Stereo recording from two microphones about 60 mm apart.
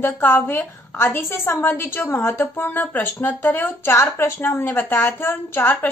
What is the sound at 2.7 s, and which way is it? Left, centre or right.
A woman's voice, left.